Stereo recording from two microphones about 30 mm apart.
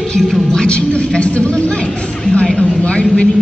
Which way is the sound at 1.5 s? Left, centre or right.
Left.